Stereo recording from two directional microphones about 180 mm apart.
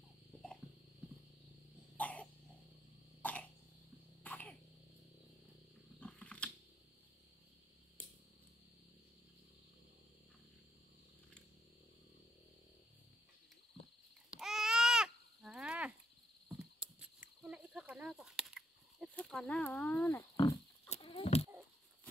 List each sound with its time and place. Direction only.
2.0 s cough: 10° left (ahead or behind)
4.2 s throat clearing: 10° left (ahead or behind)
5.9 s roaring cats: 5° left (ahead or behind)
14.4 s babbling: centre (ahead or behind)
16.4 s cricket: 5° right (ahead or behind)
19.0 s speech: 5° left (ahead or behind)
20.3 s pig: 20° left (ahead or behind)
20.9 s a sound: 30° left (ahead or behind)